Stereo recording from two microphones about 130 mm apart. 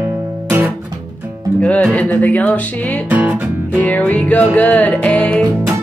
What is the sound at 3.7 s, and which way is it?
Music, 10° left (ahead or behind).